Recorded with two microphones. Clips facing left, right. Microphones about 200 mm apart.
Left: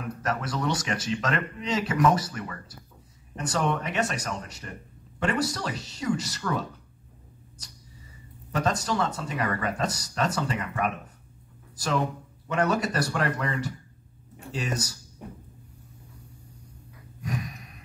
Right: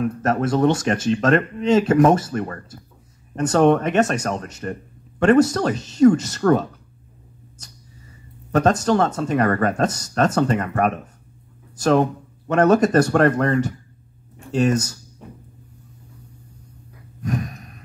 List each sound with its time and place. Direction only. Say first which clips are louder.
0.2 s speech: right 10 dB; 50° right (ahead or behind)
8.5 s speech: right 10 dB; 50° right (ahead or behind)